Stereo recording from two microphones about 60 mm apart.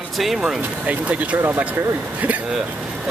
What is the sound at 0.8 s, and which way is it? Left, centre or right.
Speech, right.